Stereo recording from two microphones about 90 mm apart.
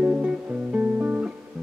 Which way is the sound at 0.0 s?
15° right (ahead or behind).